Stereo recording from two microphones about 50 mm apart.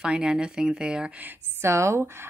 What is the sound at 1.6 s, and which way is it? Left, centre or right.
Speech, right.